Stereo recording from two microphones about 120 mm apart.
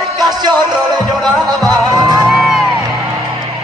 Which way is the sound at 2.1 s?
5° right (ahead or behind).